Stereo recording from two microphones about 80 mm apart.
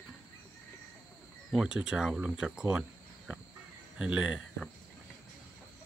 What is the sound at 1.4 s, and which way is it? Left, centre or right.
Speech, centre.